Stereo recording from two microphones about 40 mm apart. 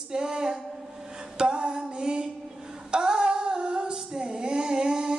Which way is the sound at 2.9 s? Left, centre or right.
Right.